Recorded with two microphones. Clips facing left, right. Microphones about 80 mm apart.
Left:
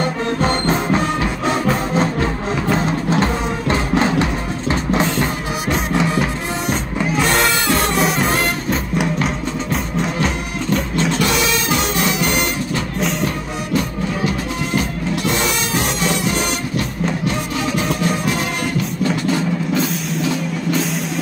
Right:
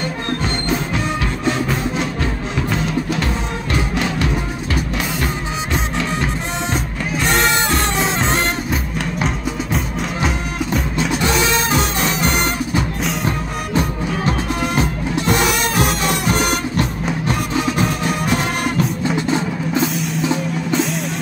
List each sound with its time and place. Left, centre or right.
0.4 s music: left
2.7 s music: left
10.2 s printer: centre
16.3 s music: right